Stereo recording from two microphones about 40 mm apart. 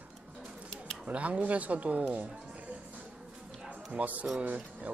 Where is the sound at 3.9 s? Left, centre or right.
Right.